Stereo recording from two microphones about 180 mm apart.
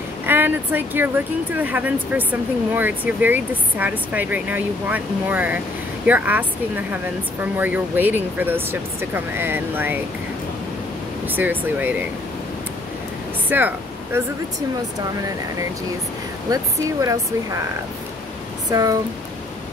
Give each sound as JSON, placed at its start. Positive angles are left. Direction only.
{"t": 0.3, "sound": "speech", "side_deg": -10}
{"t": 7.5, "sound": "speech", "side_deg": -10}
{"t": 11.2, "sound": "speech", "side_deg": -10}
{"t": 13.5, "sound": "a sound", "side_deg": -10}
{"t": 16.5, "sound": "speech", "side_deg": -20}
{"t": 18.7, "sound": "speech", "side_deg": -20}